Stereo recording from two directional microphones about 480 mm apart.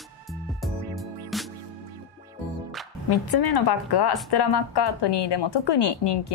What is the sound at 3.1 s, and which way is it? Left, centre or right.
A woman's voice, left.